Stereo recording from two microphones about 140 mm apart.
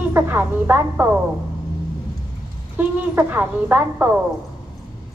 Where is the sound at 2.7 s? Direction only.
15° right (ahead or behind).